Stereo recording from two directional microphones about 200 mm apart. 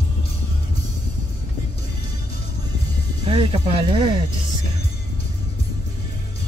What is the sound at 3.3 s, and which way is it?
Speech, 25° right (ahead or behind).